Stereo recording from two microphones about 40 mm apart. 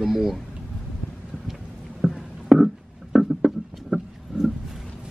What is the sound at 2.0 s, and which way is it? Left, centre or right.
Music, centre.